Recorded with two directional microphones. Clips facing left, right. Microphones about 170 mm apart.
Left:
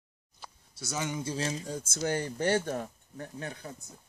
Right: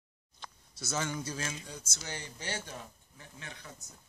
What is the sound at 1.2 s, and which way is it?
Speech, 30° left (ahead or behind).